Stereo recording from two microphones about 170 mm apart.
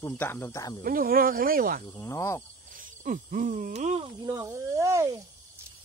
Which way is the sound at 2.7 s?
50° right (ahead or behind).